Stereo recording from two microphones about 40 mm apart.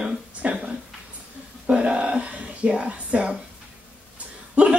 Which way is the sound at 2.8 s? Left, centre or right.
Right.